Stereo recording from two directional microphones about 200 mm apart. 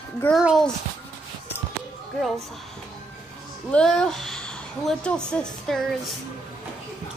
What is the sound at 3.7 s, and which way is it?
A child's voice, 5° left (ahead or behind).